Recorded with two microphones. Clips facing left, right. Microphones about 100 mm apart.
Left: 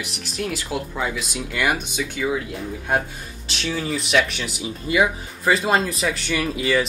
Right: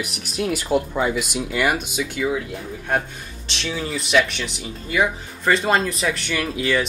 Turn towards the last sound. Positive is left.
turn(degrees=0)  # may be behind; listen again after turning